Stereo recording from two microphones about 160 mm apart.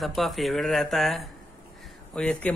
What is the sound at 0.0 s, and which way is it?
Speech, centre (ahead or behind).